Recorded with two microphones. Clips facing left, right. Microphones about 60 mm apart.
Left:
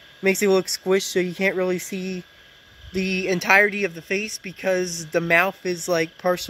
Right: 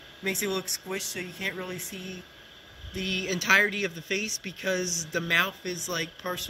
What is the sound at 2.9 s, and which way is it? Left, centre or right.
Speech, left.